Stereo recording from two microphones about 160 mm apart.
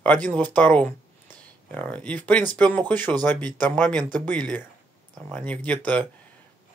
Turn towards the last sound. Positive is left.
turn(degrees=10)  # may be behind; listen again after turning